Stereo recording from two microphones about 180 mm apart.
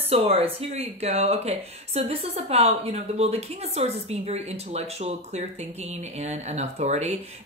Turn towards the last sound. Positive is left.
turn(degrees=-40)  # may be behind; listen again after turning